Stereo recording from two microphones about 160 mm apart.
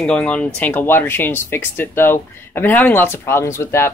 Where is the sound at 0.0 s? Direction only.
5° left (ahead or behind).